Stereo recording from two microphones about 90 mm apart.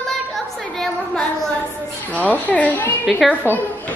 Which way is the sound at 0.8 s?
5° left (ahead or behind).